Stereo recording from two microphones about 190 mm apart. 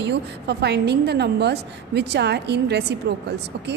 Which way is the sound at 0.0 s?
65° right (ahead or behind).